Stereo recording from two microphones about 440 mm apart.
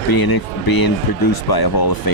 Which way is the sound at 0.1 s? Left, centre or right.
Left.